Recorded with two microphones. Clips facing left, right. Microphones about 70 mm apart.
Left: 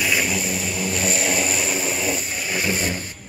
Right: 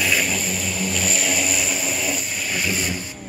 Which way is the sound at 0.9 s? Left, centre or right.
Left.